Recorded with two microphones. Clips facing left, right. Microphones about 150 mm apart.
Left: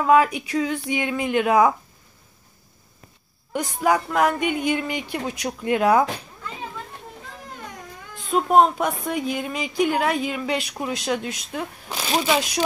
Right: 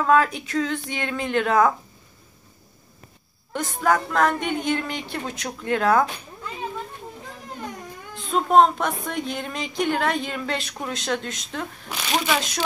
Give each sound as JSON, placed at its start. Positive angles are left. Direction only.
{"t": 0.0, "sound": "speech", "side_deg": 10}
{"t": 3.5, "sound": "speech", "side_deg": 10}
{"t": 8.3, "sound": "speech", "side_deg": 10}
{"t": 11.9, "sound": "speech", "side_deg": 30}
{"t": 12.4, "sound": "speech", "side_deg": 10}